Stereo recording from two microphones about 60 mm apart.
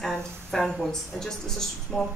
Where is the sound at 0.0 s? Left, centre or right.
Centre.